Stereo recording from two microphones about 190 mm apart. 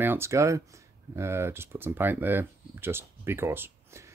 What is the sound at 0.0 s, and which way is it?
Speech, 10° right (ahead or behind).